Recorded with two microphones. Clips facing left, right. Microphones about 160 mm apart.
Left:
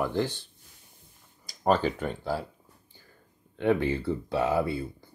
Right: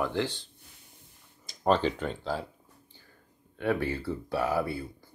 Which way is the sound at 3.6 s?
20° left (ahead or behind).